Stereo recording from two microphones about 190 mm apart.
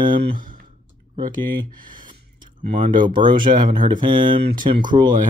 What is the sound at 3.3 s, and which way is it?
Speech, 45° right (ahead or behind).